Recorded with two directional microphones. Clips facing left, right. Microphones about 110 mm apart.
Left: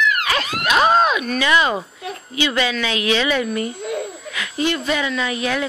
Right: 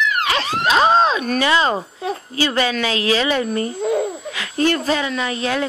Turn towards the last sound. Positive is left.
turn(degrees=-35)  # may be behind; listen again after turning